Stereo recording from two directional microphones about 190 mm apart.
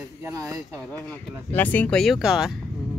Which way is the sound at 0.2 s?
15° right (ahead or behind).